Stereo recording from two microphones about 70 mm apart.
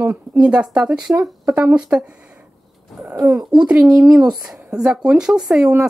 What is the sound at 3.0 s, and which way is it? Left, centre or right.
Speech, centre.